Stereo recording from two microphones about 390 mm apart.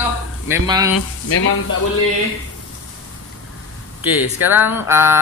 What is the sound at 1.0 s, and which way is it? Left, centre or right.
Speech, left.